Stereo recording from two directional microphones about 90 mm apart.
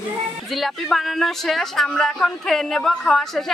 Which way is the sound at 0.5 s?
Centre (ahead or behind).